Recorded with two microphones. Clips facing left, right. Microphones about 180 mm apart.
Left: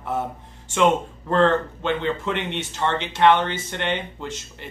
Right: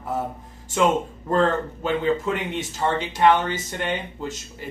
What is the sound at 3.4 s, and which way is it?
Speech, 5° right (ahead or behind).